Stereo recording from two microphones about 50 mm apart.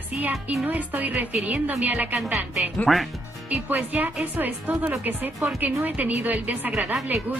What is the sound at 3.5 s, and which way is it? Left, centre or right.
A woman's voice, right.